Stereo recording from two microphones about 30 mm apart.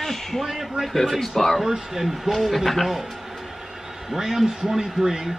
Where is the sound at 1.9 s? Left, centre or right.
Centre.